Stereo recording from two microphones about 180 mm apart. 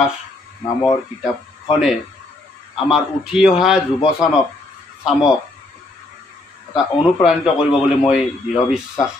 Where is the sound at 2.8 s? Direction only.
5° right (ahead or behind).